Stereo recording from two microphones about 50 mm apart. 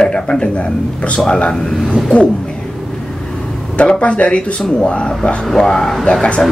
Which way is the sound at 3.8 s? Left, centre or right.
Left.